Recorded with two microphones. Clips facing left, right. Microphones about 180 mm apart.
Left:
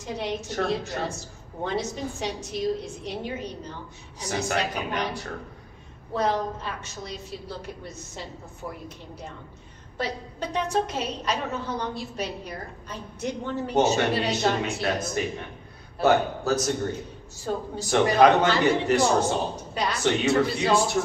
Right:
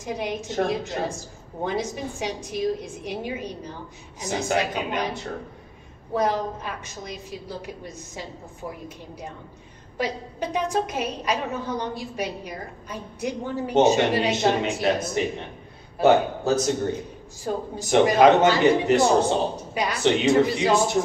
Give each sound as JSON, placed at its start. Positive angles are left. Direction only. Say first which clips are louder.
{"t": 0.0, "sound": "a woman's voice", "louder": "right 2 dB", "side_deg": -10}
{"t": 9.9, "sound": "a woman's voice", "louder": "right 3 dB", "side_deg": -15}